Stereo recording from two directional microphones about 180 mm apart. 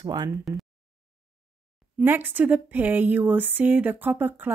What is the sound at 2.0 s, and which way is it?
Speech, 10° right (ahead or behind).